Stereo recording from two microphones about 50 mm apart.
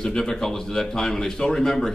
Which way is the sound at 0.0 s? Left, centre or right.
Centre.